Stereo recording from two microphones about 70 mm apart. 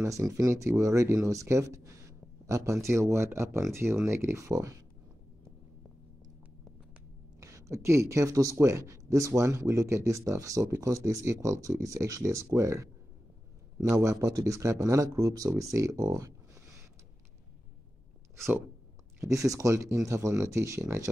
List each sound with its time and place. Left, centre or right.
0.0 s a man's voice: right
7.3 s a man's voice: right
19.2 s a man's voice: right